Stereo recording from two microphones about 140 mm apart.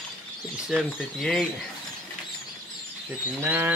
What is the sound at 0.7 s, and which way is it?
Speech, 5° right (ahead or behind).